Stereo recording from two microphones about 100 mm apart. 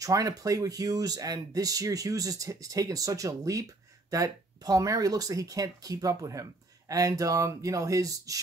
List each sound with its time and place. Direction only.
0.0 s speech: 35° right (ahead or behind)